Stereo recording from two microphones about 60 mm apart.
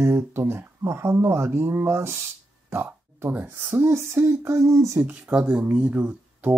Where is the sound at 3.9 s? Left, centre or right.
Right.